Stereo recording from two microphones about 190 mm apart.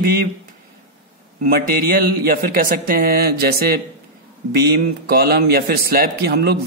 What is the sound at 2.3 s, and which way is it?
A man's voice, 50° right (ahead or behind).